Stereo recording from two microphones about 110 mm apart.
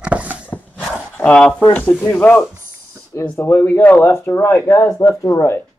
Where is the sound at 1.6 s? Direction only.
20° left (ahead or behind).